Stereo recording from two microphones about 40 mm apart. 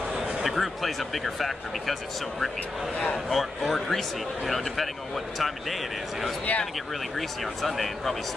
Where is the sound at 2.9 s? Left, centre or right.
Left.